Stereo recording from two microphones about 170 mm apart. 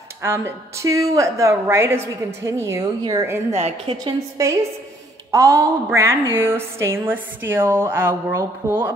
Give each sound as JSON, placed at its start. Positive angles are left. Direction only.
{"t": 0.2, "sound": "a woman's voice", "side_deg": -15}
{"t": 3.5, "sound": "a woman's voice", "side_deg": -40}
{"t": 4.0, "sound": "a woman's voice", "side_deg": -15}